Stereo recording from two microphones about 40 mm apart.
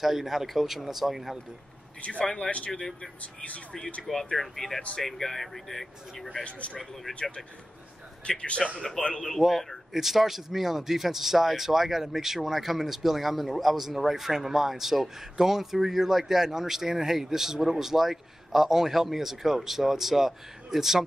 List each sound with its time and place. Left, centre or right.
0.0 s a man's voice: centre
2.0 s speech: left
2.2 s speech: centre
3.3 s speech: left
4.4 s speech: centre
6.4 s speech: left
8.7 s speech: centre
9.4 s a man's voice: centre